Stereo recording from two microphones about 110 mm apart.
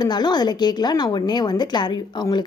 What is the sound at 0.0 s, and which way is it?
A woman's voice, 40° left (ahead or behind).